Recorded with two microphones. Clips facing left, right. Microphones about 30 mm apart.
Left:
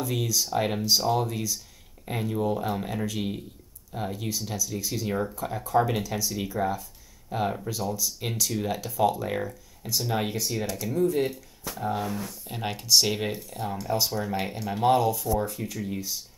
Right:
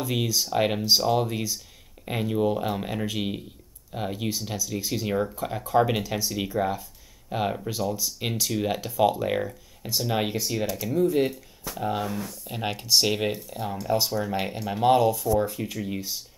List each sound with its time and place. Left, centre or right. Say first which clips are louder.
0.0 s speech: right 2 dB; centre
5.0 s speech: right 2 dB; centre
5.3 s speech: right 1 dB; right
12.4 s speech: even; centre
15.3 s speech: right 3 dB; centre
15.9 s speech: right 1 dB; right